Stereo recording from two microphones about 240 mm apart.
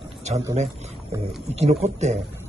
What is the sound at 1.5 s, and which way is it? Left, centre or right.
Speech, right.